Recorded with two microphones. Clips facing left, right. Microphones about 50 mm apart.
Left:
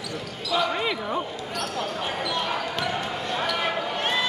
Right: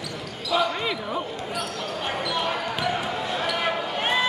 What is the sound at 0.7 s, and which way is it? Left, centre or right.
Basketball bounce, centre.